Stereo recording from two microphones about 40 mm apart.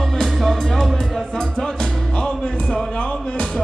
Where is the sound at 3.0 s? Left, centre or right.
Left.